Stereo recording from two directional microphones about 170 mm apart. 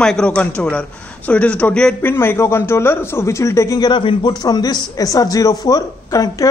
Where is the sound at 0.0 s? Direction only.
5° left (ahead or behind).